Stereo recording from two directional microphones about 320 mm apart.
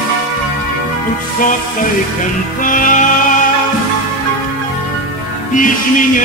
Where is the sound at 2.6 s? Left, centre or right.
Left.